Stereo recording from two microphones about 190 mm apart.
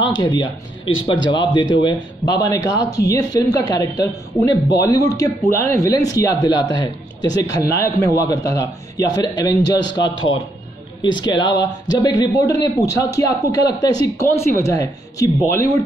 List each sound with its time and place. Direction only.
0.2 s speech: 25° left (ahead or behind)
9.5 s a man's voice: 65° left (ahead or behind)
11.0 s speech: 25° left (ahead or behind)